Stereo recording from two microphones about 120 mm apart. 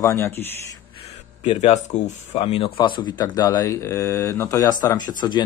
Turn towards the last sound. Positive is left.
turn(degrees=35)  # may be behind; listen again after turning